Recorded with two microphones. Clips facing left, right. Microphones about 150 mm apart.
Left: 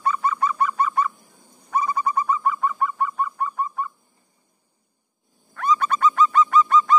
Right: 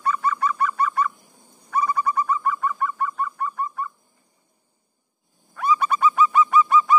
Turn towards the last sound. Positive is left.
turn(degrees=-10)  # may be behind; listen again after turning